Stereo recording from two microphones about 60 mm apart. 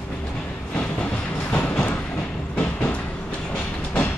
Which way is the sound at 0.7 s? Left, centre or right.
Left.